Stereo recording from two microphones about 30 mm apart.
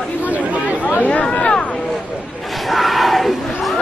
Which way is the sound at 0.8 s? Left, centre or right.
Left.